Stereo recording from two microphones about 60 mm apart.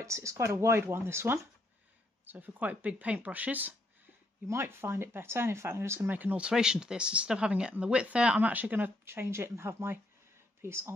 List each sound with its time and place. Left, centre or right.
0.0 s speech: right
0.7 s speech: right
2.3 s speech: right
4.5 s speech: right
6.5 s speech: centre; by 8.9 s right
9.0 s speech: right